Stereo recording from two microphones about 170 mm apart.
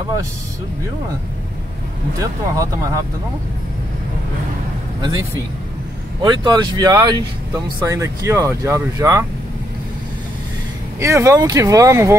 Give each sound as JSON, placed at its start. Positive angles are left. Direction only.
{"t": 2.1, "sound": "speech", "side_deg": -20}
{"t": 6.2, "sound": "speech", "side_deg": -25}
{"t": 11.0, "sound": "speech", "side_deg": -15}